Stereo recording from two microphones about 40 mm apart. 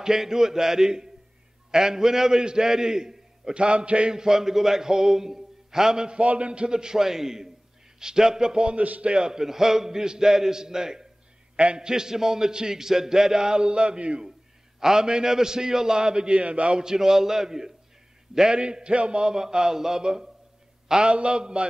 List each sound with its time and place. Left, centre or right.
0.0 s a man's voice: centre; by 4.1 s right
4.1 s a man's voice: centre
6.2 s a man's voice: right
8.7 s a man's voice: right
9.0 s a man's voice: right
11.5 s a man's voice: right
14.8 s a man's voice: centre; by 16.8 s right
16.8 s a man's voice: centre
19.3 s a man's voice: centre
20.9 s a man's voice: right